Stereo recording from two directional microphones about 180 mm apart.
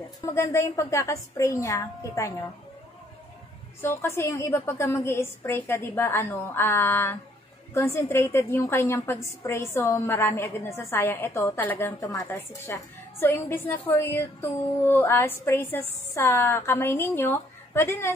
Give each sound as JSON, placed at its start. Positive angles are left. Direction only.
{"t": 0.2, "sound": "a woman's voice", "side_deg": 15}
{"t": 3.8, "sound": "a woman's voice", "side_deg": 15}